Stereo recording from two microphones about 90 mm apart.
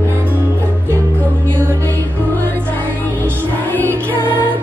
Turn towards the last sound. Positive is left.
turn(degrees=20)  # may be behind; listen again after turning